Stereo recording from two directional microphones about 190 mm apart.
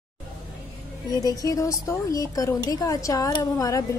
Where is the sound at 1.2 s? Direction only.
20° left (ahead or behind).